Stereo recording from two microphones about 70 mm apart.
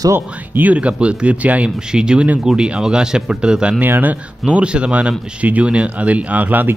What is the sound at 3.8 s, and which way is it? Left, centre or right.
Speech, right.